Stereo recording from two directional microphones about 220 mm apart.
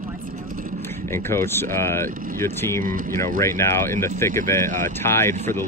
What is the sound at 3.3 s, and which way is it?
Speech, 10° left (ahead or behind).